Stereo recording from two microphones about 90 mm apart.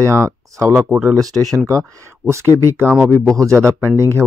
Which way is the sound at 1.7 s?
35° right (ahead or behind).